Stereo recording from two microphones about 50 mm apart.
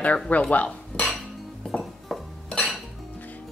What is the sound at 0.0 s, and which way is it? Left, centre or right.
Speech, left.